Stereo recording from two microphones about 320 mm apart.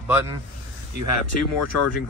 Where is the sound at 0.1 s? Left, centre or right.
Centre.